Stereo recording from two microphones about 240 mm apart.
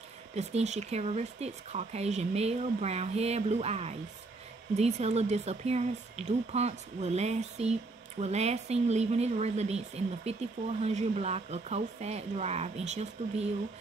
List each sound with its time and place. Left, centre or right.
0.4 s speech: right